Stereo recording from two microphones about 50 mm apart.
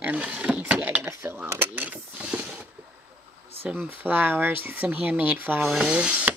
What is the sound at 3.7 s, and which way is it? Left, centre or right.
Speech, right.